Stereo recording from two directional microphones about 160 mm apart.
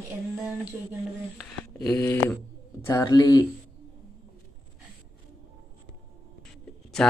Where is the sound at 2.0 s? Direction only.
15° left (ahead or behind).